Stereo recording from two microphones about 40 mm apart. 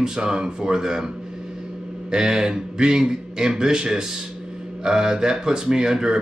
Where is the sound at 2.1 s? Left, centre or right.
Centre.